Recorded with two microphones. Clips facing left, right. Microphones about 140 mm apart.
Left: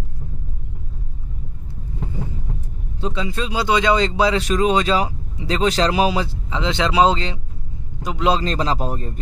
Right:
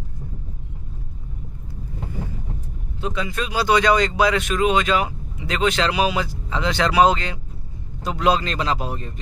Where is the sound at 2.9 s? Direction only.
25° left (ahead or behind).